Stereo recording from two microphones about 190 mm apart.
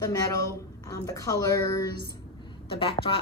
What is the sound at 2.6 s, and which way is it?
Speech, 30° left (ahead or behind).